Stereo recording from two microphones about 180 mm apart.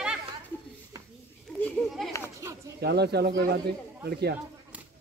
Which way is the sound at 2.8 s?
65° right (ahead or behind).